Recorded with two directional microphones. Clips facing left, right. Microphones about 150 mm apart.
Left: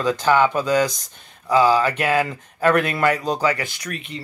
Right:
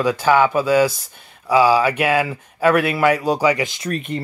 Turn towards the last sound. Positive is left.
turn(degrees=-45)  # may be behind; listen again after turning